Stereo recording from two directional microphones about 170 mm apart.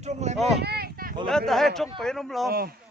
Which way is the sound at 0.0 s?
40° right (ahead or behind).